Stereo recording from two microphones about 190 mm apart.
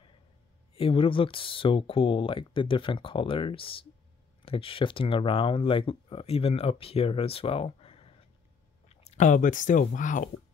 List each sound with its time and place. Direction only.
0.7 s speech: 30° left (ahead or behind); by 10.3 s 45° left (ahead or behind)